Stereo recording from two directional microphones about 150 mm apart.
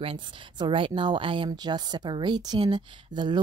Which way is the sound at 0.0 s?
35° right (ahead or behind).